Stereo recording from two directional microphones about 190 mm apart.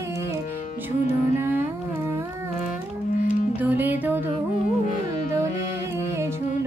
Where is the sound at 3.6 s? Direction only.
10° right (ahead or behind).